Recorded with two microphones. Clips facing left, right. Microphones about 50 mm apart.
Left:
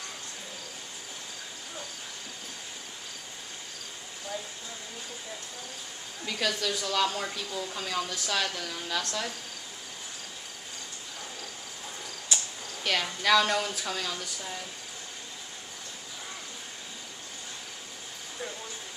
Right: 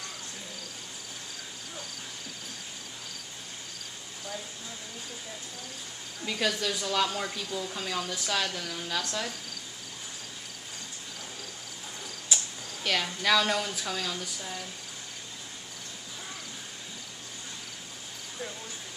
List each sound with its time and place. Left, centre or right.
6.2 s speech: centre
12.3 s cricket: centre
12.8 s speech: centre